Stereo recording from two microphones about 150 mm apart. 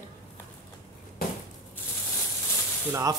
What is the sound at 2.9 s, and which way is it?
Speech, 20° right (ahead or behind).